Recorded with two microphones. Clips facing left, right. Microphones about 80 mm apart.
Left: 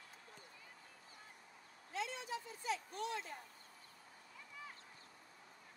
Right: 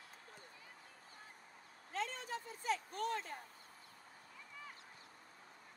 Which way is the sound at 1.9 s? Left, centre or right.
Right.